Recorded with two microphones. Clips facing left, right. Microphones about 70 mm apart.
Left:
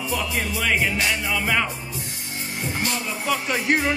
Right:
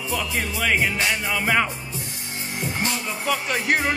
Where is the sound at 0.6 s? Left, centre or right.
Centre.